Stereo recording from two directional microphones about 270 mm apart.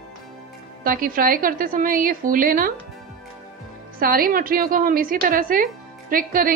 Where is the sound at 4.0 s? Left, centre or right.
Right.